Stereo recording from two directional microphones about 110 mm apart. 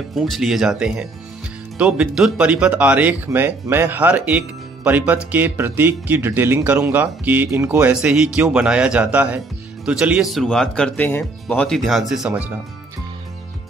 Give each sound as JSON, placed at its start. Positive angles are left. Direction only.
{"t": 0.1, "sound": "a man's voice", "side_deg": 0}
{"t": 7.9, "sound": "a man's voice", "side_deg": -10}